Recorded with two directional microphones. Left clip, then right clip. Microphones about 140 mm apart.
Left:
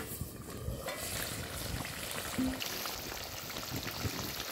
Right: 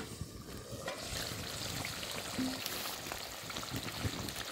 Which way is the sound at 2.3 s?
5° left (ahead or behind).